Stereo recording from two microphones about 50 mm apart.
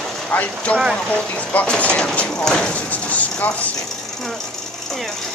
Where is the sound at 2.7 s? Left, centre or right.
Left.